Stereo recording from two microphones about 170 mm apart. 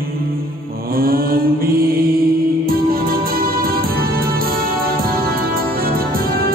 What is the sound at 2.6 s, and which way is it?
Music, 60° right (ahead or behind).